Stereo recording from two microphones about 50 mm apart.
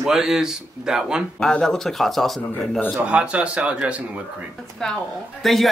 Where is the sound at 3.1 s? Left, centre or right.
Right.